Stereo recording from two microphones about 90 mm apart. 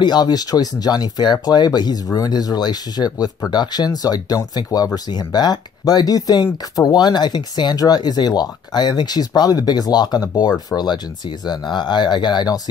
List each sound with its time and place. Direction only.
0.0 s speech: 50° left (ahead or behind)